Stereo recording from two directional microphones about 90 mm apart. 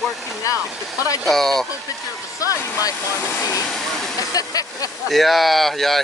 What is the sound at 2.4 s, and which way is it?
Speech, 40° left (ahead or behind).